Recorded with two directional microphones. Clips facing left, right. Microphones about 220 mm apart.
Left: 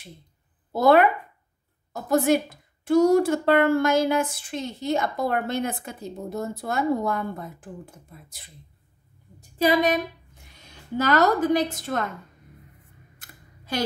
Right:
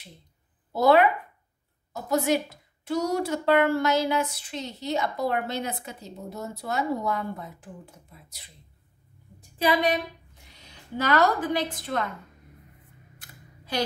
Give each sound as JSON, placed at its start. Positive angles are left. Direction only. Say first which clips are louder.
{"t": 0.7, "sound": "a woman's voice", "louder": "left 2 dB", "side_deg": 50}
{"t": 9.4, "sound": "a woman's voice", "louder": "left 3 dB", "side_deg": 45}
{"t": 13.2, "sound": "camera", "louder": "right 1 dB", "side_deg": 50}